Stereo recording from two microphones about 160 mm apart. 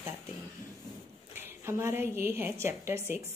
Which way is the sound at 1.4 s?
15° right (ahead or behind).